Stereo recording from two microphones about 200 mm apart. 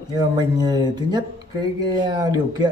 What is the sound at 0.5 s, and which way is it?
Speech, 20° right (ahead or behind).